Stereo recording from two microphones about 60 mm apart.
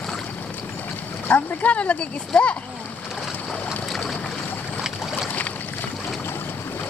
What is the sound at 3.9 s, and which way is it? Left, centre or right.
Boat, centre.